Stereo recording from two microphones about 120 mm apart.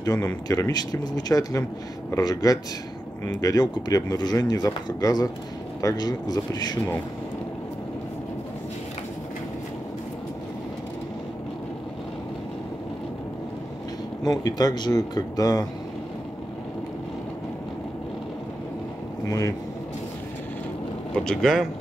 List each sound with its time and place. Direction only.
0.0 s speech: 30° left (ahead or behind)
14.2 s speech: 35° left (ahead or behind)
19.2 s speech: 25° left (ahead or behind)
21.1 s speech: 5° left (ahead or behind)